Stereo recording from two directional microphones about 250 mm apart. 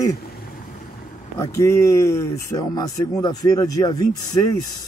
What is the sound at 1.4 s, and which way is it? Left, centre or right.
Speech, centre.